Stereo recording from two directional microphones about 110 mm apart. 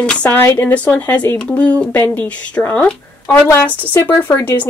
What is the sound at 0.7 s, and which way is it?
Speech, 15° left (ahead or behind).